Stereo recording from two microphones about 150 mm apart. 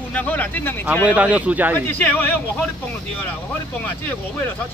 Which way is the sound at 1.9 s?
10° left (ahead or behind).